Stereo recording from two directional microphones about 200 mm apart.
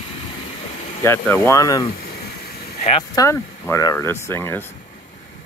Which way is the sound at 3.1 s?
15° left (ahead or behind).